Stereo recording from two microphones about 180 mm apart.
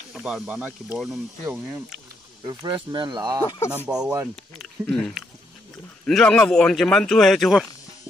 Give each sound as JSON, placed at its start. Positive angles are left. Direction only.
{"t": 0.1, "sound": "a man's voice", "side_deg": -5}
{"t": 2.4, "sound": "speech", "side_deg": -25}
{"t": 3.4, "sound": "speech", "side_deg": 15}
{"t": 3.7, "sound": "a man's voice", "side_deg": -5}